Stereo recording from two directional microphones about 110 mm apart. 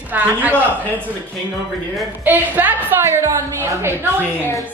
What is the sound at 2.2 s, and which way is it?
A woman's voice, 15° right (ahead or behind).